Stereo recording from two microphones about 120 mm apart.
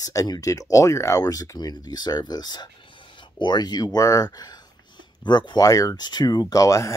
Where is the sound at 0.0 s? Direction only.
30° left (ahead or behind).